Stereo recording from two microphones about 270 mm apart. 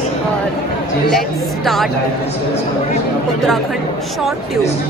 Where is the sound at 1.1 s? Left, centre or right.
Centre.